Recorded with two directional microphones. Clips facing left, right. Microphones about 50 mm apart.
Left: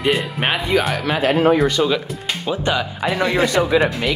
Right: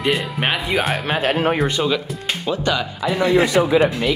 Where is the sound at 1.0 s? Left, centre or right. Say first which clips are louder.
Left 3 dB; right.